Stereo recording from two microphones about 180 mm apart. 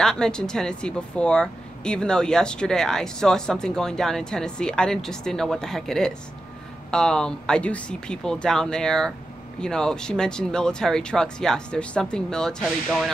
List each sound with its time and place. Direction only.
0.0 s speech: 5° left (ahead or behind)